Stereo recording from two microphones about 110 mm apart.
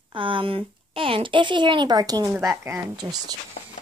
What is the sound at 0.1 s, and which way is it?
Speech, 50° right (ahead or behind).